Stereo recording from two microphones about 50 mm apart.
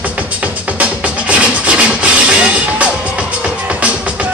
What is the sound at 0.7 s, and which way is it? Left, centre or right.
Music, right.